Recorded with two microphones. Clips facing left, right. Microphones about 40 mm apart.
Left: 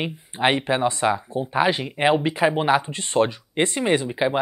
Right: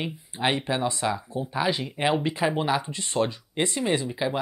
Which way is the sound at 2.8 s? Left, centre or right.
Left.